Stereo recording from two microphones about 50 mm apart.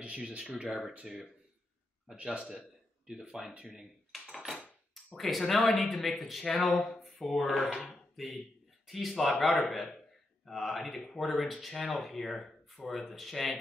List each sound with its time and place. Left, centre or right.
0.4 s speech: centre
0.7 s speech: centre
2.1 s a man's voice: right
3.1 s speech: centre
4.1 s a sound: centre
5.1 s speech: centre
7.8 s a sound: centre
8.8 s speech: centre